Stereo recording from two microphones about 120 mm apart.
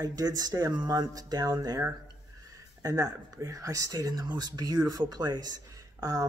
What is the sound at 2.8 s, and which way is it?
Speech, 30° right (ahead or behind).